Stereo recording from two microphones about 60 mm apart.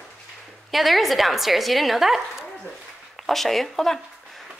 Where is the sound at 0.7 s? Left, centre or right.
Centre.